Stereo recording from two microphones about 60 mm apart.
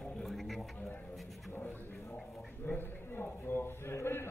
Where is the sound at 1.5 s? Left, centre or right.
Left.